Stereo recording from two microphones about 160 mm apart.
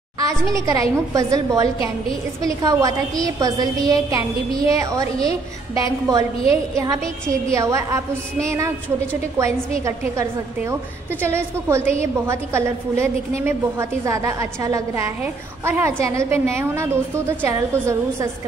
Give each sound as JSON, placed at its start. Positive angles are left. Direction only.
{"t": 0.2, "sound": "a woman's voice", "side_deg": -20}
{"t": 7.5, "sound": "a woman's voice", "side_deg": -20}